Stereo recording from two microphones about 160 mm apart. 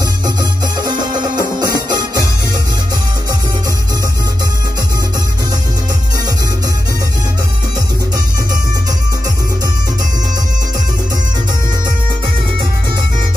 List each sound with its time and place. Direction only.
0.4 s music: 25° right (ahead or behind)